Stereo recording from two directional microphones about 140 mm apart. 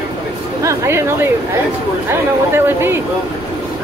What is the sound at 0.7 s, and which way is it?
Speech, 20° right (ahead or behind).